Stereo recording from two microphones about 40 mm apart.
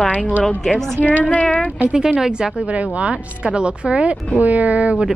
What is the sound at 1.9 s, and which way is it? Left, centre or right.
Speech, centre.